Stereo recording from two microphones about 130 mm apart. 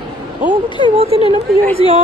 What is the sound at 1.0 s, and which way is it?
Speech, 50° right (ahead or behind).